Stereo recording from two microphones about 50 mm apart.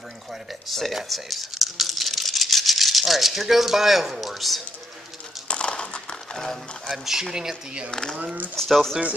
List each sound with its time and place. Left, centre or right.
0.3 s speech: centre
5.5 s a sound: centre
6.3 s speech: centre
7.1 s speech: centre
7.9 s speech: centre